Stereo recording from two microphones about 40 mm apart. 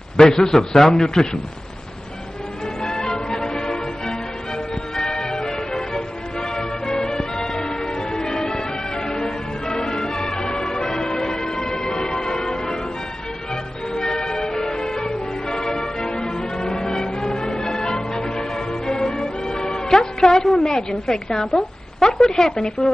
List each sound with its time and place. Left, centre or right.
0.2 s a man's voice: centre
2.8 s music: centre
12.2 s change ringing: centre
13.5 s music: centre
20.6 s a woman's voice: centre